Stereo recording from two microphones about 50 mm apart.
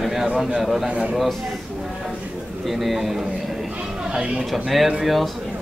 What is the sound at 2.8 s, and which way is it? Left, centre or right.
Speech, centre.